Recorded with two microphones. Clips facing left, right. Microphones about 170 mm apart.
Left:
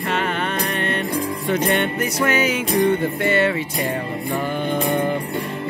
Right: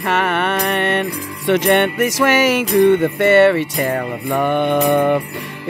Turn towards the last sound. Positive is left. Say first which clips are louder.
# right 6 dB
turn(degrees=-70)  # may be behind; listen again after turning